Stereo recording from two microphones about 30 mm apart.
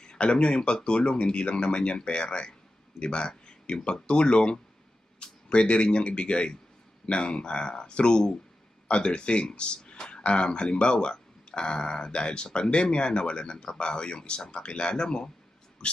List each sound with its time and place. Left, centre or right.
0.0 s speech: left